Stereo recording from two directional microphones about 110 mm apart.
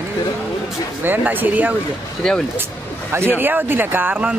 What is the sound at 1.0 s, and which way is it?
Speech, 15° right (ahead or behind).